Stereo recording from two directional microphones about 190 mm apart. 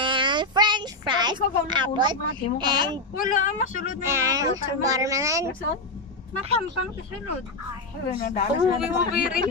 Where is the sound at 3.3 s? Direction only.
40° left (ahead or behind).